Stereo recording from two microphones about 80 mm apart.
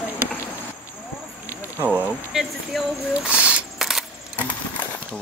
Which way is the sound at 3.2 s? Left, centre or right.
Centre.